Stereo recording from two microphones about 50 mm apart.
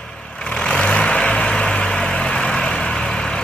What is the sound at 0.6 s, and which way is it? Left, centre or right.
Vehicle, left.